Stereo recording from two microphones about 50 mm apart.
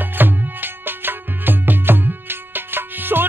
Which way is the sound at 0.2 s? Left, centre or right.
Right.